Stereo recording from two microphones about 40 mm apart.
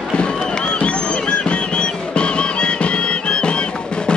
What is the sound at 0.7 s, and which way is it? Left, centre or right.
Music, left.